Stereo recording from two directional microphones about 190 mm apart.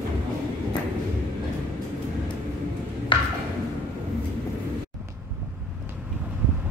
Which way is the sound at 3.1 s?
25° left (ahead or behind).